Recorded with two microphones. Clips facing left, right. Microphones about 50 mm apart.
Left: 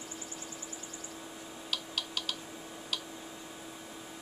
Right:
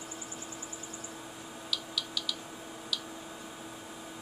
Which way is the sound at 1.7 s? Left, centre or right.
Left.